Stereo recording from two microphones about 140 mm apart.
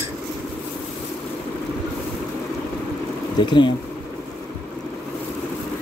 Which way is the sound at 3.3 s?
35° left (ahead or behind).